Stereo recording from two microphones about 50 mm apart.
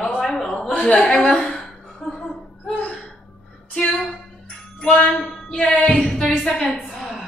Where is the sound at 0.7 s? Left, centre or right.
Centre.